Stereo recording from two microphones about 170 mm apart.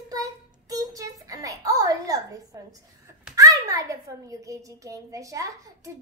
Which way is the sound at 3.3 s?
20° right (ahead or behind).